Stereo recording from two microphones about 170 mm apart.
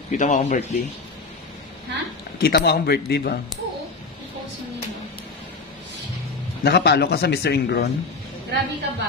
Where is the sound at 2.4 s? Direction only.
65° left (ahead or behind).